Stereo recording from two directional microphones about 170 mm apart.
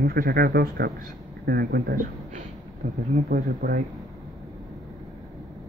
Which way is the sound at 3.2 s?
75° right (ahead or behind).